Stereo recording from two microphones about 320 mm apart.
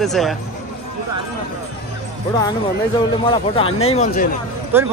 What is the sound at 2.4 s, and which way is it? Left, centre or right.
Speech, centre.